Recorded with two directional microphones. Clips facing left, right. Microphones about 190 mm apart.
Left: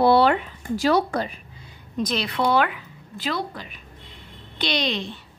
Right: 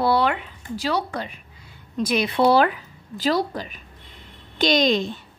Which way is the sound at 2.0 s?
10° right (ahead or behind).